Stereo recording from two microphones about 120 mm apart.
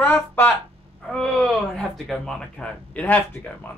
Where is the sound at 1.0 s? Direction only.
5° left (ahead or behind).